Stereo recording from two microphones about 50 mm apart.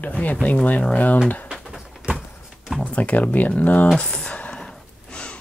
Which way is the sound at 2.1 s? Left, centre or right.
Right.